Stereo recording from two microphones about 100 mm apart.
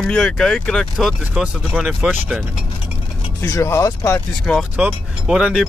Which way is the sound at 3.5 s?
30° left (ahead or behind).